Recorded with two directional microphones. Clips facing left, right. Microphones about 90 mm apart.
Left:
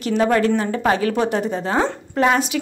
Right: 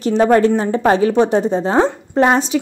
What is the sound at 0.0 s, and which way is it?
A woman's voice, 30° right (ahead or behind).